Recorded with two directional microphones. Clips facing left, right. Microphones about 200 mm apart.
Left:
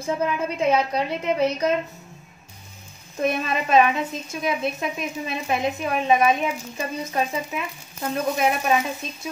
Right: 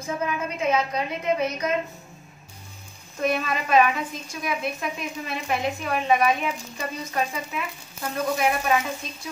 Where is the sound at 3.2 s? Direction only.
25° left (ahead or behind).